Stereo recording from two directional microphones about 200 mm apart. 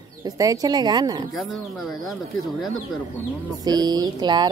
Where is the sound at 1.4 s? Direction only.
Centre (ahead or behind).